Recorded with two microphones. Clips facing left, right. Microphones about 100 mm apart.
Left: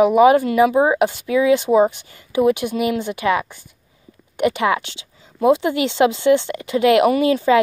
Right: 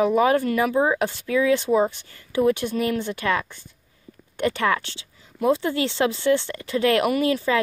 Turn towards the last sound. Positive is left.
turn(degrees=20)  # may be behind; listen again after turning